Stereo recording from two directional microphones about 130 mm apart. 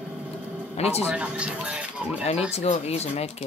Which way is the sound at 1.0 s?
10° right (ahead or behind).